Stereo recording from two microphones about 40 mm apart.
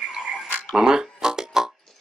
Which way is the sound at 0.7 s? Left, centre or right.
Centre.